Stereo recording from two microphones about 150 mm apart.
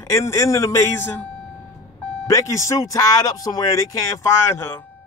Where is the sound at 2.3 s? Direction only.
20° left (ahead or behind).